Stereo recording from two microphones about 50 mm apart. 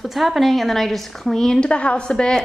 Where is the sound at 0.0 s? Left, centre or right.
Centre.